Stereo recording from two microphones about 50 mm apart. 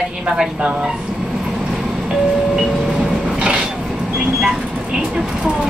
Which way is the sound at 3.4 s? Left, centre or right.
Centre.